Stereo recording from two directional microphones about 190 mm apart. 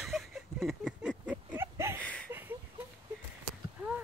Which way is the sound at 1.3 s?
15° right (ahead or behind).